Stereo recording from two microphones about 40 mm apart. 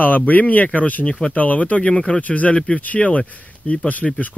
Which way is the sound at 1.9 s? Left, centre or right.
Left.